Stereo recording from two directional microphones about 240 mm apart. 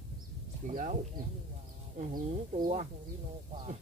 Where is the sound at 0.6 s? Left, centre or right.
Right.